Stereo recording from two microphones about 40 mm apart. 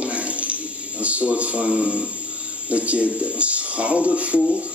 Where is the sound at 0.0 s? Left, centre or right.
Right.